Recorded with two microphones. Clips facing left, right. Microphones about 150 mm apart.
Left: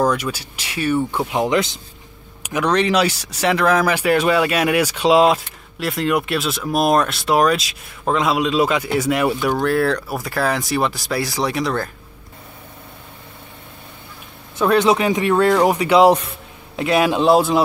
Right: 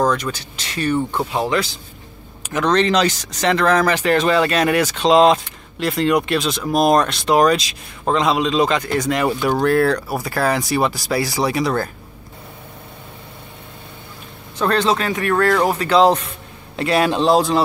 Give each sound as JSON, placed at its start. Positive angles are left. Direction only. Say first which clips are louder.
{"t": 0.0, "sound": "speech", "louder": "even", "side_deg": 10}
{"t": 14.6, "sound": "speech", "louder": "left 3 dB", "side_deg": 10}